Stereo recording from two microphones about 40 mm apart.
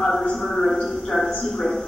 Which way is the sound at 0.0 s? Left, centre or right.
Centre.